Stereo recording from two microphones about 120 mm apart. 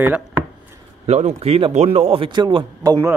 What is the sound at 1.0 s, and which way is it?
A man's voice, 70° right (ahead or behind).